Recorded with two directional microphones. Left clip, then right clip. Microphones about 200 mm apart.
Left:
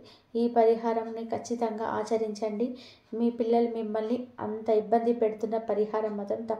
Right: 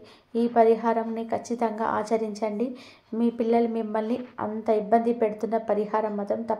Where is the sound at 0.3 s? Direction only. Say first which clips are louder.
Right 3 dB; 25° right (ahead or behind).